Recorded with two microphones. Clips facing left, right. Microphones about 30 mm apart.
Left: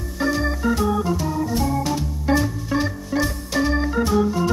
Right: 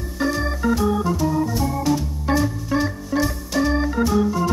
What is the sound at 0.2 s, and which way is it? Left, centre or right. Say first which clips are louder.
Organ: even; centre.